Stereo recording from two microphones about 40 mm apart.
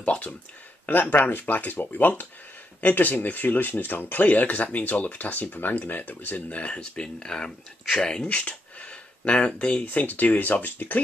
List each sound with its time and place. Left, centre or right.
0.0 s speech: left
1.1 s speech: left; by 8.3 s centre
8.3 s speech: left
9.9 s speech: left